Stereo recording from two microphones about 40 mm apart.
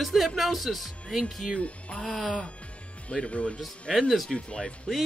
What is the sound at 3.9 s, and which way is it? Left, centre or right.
Speech, centre.